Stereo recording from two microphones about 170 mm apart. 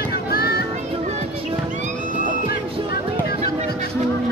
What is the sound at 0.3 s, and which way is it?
Music, 65° left (ahead or behind).